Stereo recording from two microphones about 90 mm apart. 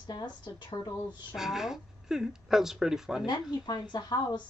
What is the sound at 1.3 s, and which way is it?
A woman's voice, 5° right (ahead or behind).